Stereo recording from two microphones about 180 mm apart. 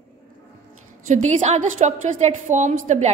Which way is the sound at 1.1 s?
40° right (ahead or behind).